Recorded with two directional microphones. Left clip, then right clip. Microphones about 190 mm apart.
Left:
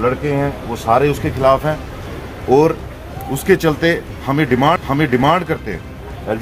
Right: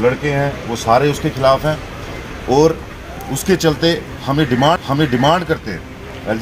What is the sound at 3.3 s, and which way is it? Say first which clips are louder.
Speech: left 1 dB; 20° left (ahead or behind).